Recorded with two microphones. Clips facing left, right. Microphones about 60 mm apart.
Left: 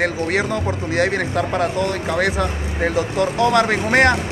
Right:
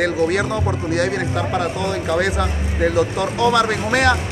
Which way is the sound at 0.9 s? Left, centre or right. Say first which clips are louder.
Left 2 dB; left.